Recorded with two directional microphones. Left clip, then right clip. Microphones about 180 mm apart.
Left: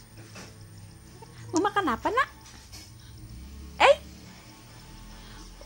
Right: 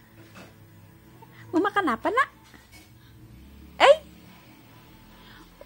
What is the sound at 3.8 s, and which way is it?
Speech, 20° right (ahead or behind).